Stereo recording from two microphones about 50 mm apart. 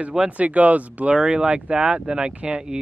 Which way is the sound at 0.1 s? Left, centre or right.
Right.